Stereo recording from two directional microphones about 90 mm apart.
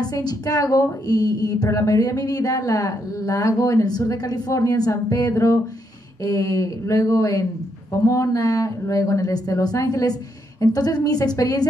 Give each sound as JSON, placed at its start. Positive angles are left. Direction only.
{"t": 0.1, "sound": "a woman's voice", "side_deg": 45}